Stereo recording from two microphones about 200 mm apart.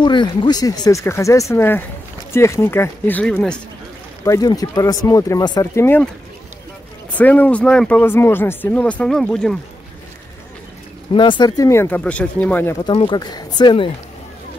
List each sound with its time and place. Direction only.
0.0 s speech: 25° left (ahead or behind); by 3.6 s 5° left (ahead or behind)
4.2 s speech: 15° left (ahead or behind)
7.2 s speech: 10° left (ahead or behind)
11.1 s speech: 25° left (ahead or behind)
12.8 s speech: 25° left (ahead or behind)